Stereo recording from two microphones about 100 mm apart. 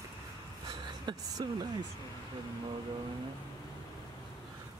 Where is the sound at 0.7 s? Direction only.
45° right (ahead or behind).